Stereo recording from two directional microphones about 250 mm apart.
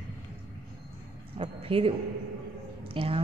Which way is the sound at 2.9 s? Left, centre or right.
Right.